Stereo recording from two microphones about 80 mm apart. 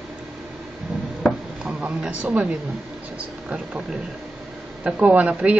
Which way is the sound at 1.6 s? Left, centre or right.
Centre.